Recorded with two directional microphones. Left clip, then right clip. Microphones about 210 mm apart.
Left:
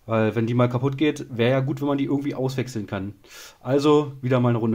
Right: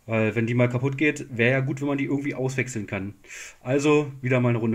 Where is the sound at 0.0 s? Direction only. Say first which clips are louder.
Left 2 dB; 10° left (ahead or behind).